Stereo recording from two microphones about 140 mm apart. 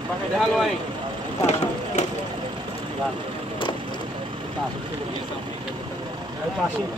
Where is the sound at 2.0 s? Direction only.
55° left (ahead or behind).